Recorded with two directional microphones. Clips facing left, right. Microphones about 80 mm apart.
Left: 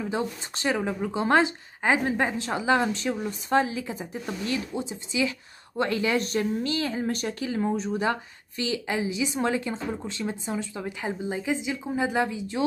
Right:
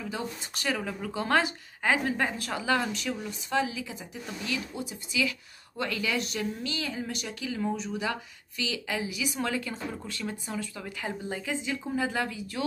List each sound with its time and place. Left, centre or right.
0.0 s speech: left